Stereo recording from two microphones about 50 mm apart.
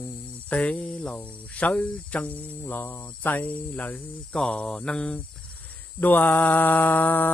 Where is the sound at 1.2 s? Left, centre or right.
Left.